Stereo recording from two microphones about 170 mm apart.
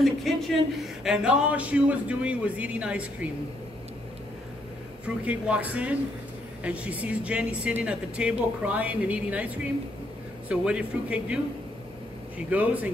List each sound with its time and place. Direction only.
0.0 s speech: centre (ahead or behind)
5.0 s speech: 10° right (ahead or behind)
12.4 s speech: 10° right (ahead or behind)